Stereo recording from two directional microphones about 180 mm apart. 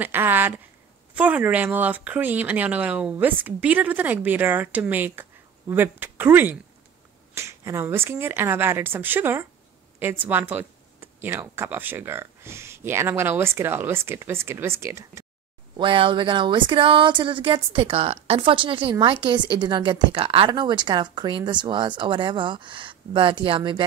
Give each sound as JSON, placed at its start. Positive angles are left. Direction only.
{"t": 0.0, "sound": "a sound", "side_deg": -10}
{"t": 1.1, "sound": "speech", "side_deg": -10}
{"t": 15.8, "sound": "speech", "side_deg": -25}